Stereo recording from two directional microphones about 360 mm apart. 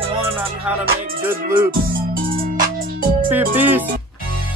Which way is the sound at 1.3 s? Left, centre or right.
Right.